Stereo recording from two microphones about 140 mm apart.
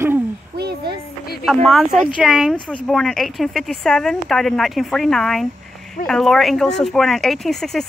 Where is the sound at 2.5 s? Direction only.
5° left (ahead or behind).